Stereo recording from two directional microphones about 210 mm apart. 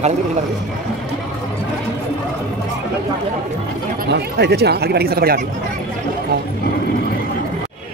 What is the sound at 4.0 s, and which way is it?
Speech, 50° right (ahead or behind).